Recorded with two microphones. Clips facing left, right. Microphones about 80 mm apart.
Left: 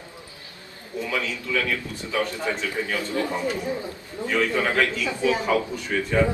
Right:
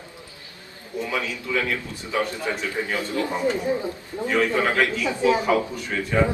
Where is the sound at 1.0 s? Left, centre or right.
Centre.